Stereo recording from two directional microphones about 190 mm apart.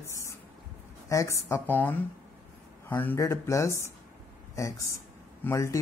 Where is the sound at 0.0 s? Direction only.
15° left (ahead or behind).